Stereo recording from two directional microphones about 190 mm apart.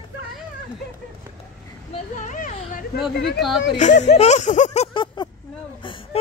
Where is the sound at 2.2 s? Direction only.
40° left (ahead or behind).